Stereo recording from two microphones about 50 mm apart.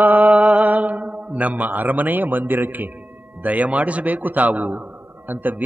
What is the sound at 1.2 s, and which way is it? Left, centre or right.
A man's voice, right.